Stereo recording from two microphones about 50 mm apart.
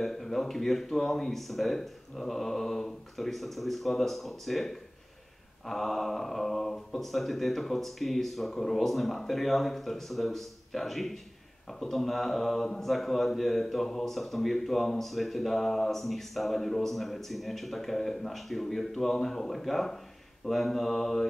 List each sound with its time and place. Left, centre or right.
0.0 s speech: centre